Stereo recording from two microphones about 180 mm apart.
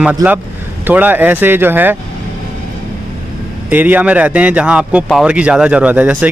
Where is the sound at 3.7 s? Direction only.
10° right (ahead or behind).